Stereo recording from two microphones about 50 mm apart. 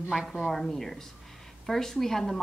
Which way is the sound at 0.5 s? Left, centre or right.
Centre.